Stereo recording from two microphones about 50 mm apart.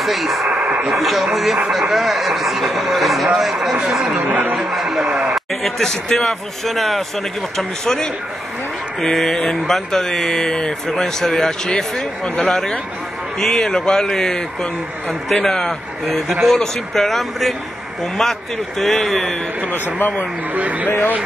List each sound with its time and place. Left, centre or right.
0.0 s speech: centre
0.5 s radio: right
0.8 s speech: centre
4.2 s speech: right
4.6 s speech: centre
5.0 s speech: centre
5.3 s speech: centre
18.8 s speech: centre
19.7 s speech: left
20.5 s speech: right